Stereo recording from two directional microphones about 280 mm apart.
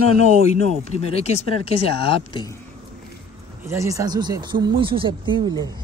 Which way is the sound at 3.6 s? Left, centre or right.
Centre.